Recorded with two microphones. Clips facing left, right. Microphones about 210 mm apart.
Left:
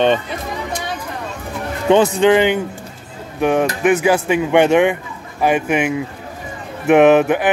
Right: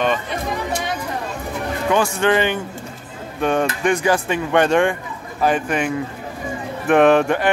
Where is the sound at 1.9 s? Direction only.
20° left (ahead or behind).